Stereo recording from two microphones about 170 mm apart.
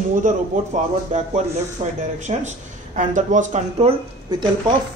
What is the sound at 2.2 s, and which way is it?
Speech, 45° right (ahead or behind).